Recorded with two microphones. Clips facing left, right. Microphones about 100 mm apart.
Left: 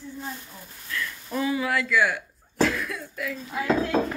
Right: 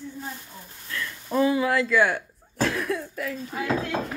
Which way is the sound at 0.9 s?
30° right (ahead or behind).